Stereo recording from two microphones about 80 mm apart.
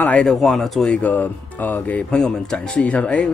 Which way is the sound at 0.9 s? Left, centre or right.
Centre.